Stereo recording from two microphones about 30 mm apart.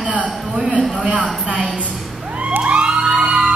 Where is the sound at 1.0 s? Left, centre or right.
Right.